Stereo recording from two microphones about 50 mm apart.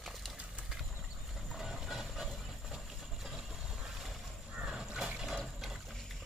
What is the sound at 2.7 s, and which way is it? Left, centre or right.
Vehicle, centre.